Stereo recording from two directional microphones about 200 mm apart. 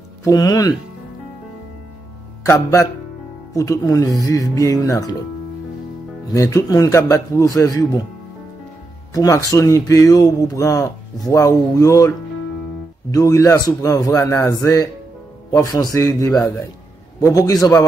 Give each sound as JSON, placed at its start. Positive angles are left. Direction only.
{"t": 0.2, "sound": "speech", "side_deg": 20}
{"t": 2.4, "sound": "speech", "side_deg": 15}
{"t": 6.3, "sound": "speech", "side_deg": 15}
{"t": 9.1, "sound": "speech", "side_deg": 15}
{"t": 13.1, "sound": "speech", "side_deg": 15}